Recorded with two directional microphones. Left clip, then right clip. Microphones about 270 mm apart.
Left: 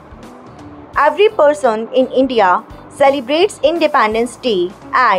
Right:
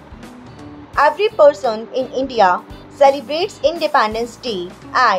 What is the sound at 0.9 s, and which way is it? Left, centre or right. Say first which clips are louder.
A woman's voice: left 2 dB; centre.